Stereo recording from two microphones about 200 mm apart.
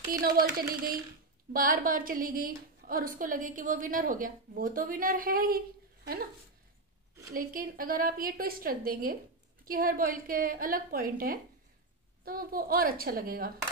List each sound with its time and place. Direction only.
0.2 s a woman's voice: 45° right (ahead or behind)
7.3 s a woman's voice: 45° right (ahead or behind)